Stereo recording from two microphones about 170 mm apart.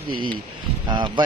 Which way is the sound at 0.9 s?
25° right (ahead or behind).